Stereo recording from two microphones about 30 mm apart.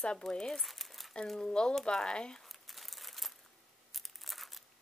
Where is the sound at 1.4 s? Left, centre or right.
Left.